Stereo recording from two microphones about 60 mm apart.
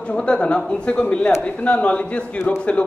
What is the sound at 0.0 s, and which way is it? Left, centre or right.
Speech, centre.